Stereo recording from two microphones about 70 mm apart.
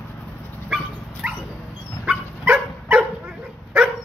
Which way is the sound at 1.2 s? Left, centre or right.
Centre.